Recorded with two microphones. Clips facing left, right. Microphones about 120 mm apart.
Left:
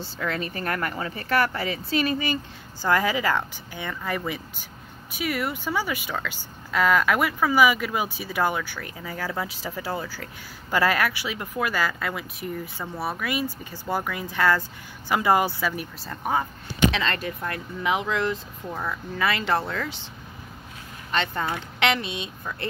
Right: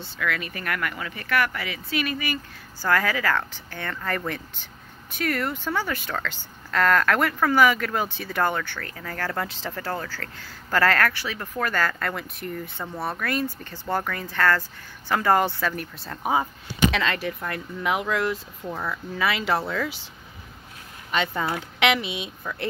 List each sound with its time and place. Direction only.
0.0 s speech: 35° left (ahead or behind)
2.8 s speech: 20° left (ahead or behind); by 20.0 s 5° right (ahead or behind)
21.1 s speech: 5° right (ahead or behind)